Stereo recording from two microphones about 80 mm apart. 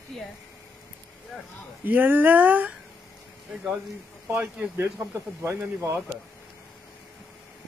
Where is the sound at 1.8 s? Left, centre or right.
Right.